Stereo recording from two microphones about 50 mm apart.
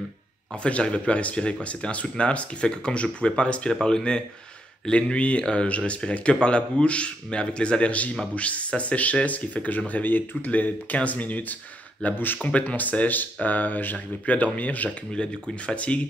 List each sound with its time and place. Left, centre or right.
0.7 s speech: left
12.4 s speech: left
14.9 s speech: left